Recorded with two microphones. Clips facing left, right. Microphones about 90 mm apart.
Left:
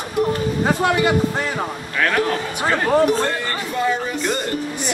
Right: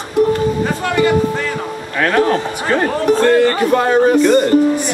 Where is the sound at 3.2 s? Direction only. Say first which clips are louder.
Right 11 dB; 60° right (ahead or behind).